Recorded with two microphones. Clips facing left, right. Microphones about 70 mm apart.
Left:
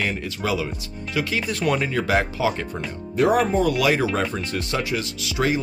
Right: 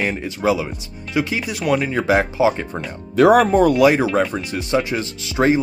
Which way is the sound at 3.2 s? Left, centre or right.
Right.